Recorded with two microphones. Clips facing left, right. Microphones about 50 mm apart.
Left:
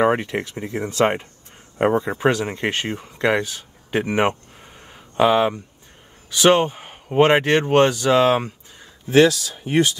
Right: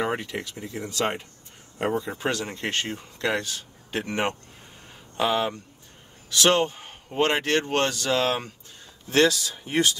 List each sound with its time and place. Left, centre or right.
0.0 s speech: left
2.1 s speech: left
9.1 s speech: centre